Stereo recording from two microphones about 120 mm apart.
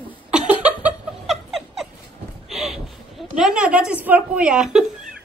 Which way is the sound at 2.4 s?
Centre (ahead or behind).